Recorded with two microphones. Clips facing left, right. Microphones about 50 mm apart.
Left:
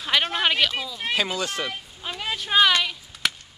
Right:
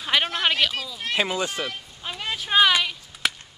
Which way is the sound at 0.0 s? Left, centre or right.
Centre.